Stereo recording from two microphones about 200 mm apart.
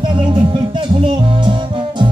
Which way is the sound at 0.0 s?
25° right (ahead or behind).